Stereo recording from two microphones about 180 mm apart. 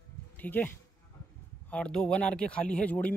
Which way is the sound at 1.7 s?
5° left (ahead or behind).